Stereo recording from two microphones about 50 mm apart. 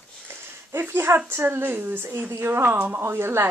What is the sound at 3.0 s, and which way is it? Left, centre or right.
Speech, right.